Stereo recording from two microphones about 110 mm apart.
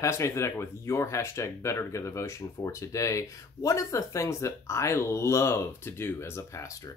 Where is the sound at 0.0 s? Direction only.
25° left (ahead or behind).